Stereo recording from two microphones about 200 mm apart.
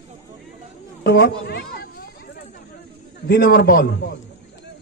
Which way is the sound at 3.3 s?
50° left (ahead or behind).